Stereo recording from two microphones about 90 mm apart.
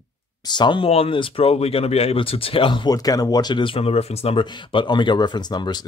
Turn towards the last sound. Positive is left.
turn(degrees=55)  # may be behind; listen again after turning